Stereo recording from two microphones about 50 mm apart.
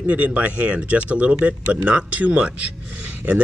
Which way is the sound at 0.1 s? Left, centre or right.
Right.